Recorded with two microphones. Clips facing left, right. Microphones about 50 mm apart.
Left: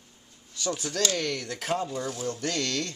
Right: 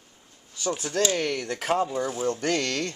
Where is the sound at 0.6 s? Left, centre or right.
Right.